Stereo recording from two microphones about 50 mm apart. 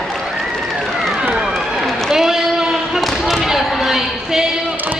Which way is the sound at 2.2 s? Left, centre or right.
Centre.